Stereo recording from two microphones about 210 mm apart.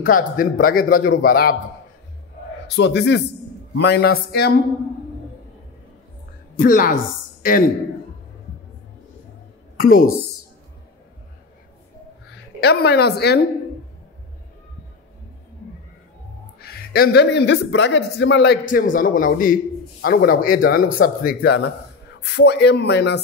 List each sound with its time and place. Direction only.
0.0 s a man's voice: 40° left (ahead or behind)
2.7 s a man's voice: 55° left (ahead or behind)
6.6 s a woman's voice: 40° left (ahead or behind)
9.8 s a woman's voice: 40° left (ahead or behind)
12.5 s a man's voice: 50° left (ahead or behind)
16.5 s a man's voice: 45° left (ahead or behind)